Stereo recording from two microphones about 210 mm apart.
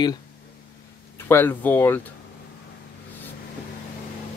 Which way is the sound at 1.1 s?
10° left (ahead or behind).